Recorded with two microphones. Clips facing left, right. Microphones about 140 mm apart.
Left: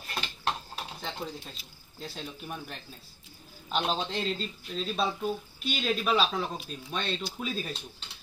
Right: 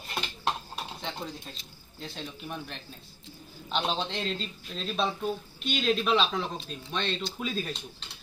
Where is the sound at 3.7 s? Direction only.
5° left (ahead or behind).